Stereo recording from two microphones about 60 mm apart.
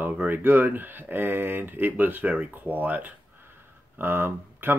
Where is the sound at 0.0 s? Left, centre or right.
Right.